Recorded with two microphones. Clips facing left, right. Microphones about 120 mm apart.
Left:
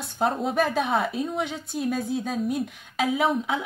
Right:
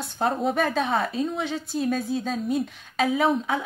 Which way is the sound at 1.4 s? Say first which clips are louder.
Right 2 dB; 15° left (ahead or behind).